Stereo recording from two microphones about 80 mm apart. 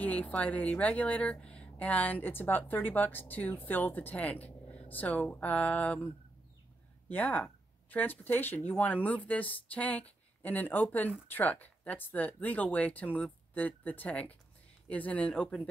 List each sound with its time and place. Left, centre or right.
0.0 s speech: centre
7.1 s speech: centre